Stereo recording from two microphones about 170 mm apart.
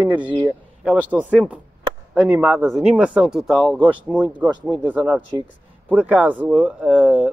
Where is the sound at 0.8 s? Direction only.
5° right (ahead or behind); by 5.5 s 25° right (ahead or behind).